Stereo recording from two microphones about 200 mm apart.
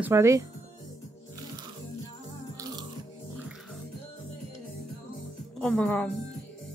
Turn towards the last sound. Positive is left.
turn(degrees=5)  # may be behind; listen again after turning